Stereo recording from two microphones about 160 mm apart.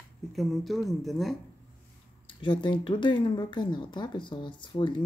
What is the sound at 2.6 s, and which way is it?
Speech, 30° left (ahead or behind).